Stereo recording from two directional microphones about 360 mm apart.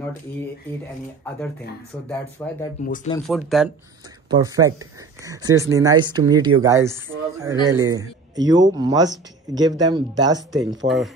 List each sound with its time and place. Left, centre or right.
2.0 s speech: centre
2.8 s speech: left
3.3 s a man's voice: centre
10.8 s speech: right